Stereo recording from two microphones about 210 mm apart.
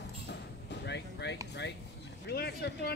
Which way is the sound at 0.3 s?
55° left (ahead or behind).